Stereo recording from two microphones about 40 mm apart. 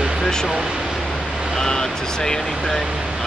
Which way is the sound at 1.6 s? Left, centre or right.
Centre.